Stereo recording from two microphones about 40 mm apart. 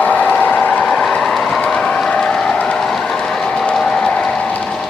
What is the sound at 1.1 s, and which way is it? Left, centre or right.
Vehicle, centre.